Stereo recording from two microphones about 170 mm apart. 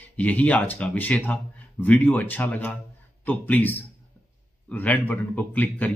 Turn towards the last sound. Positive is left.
turn(degrees=10)  # may be behind; listen again after turning